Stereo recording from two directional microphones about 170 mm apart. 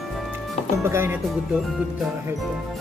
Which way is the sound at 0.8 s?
15° right (ahead or behind).